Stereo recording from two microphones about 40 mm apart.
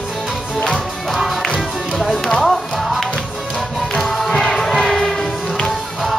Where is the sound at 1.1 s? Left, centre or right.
Centre.